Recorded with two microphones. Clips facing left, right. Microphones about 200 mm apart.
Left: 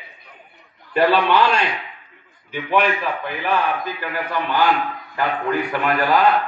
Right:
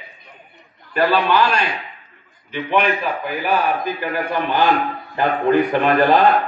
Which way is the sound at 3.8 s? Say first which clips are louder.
Right 4 dB; 15° right (ahead or behind).